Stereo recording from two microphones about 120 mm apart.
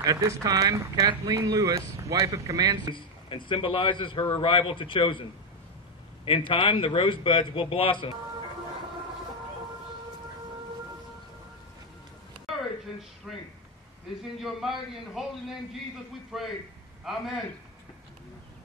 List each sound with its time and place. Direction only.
0.0 s speech: 30° right (ahead or behind)
2.9 s a man's voice: 45° left (ahead or behind)
6.5 s a man's voice: 45° left (ahead or behind)
13.3 s a man's voice: centre (ahead or behind)